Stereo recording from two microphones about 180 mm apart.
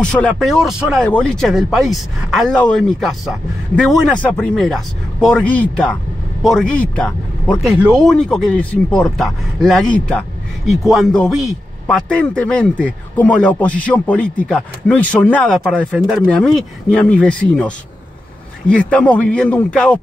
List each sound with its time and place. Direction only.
0.0 s a man's voice: 5° left (ahead or behind)